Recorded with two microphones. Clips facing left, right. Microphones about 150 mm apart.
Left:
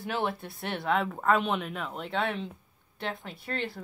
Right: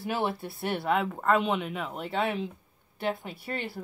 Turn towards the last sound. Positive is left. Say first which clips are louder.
# even
turn(degrees=-5)  # may be behind; listen again after turning